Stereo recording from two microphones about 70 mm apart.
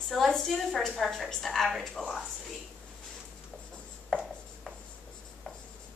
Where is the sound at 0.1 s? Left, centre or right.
Centre.